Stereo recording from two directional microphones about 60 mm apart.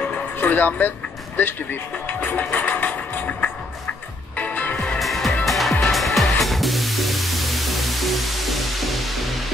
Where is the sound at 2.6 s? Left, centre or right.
Left.